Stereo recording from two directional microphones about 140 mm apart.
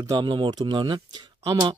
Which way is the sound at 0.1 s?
35° right (ahead or behind).